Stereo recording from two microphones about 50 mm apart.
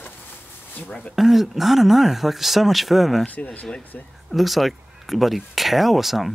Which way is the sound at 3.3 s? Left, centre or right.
Left.